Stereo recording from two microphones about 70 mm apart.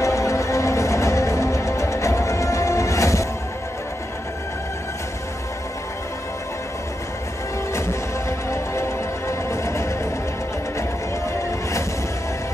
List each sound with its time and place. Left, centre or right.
0.0 s music: left
7.7 s music: left